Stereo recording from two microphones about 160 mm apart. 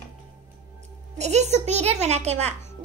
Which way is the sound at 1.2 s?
45° right (ahead or behind).